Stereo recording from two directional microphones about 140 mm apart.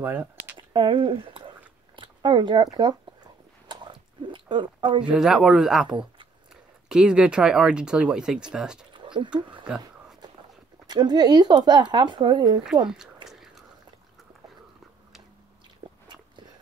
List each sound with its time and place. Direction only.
0.0 s speech: 15° right (ahead or behind)
0.6 s speech: 35° right (ahead or behind)
3.6 s chewing: 35° right (ahead or behind)
5.0 s speech: 5° right (ahead or behind)
8.9 s a sound: 35° right (ahead or behind)
10.9 s speech: 30° right (ahead or behind)
13.3 s a sound: centre (ahead or behind)
15.8 s biting: 35° right (ahead or behind)